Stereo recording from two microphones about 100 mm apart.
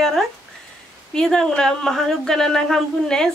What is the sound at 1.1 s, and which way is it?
Speech, 5° left (ahead or behind).